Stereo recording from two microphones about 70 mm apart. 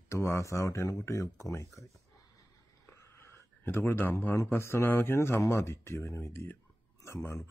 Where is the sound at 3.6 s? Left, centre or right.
Left.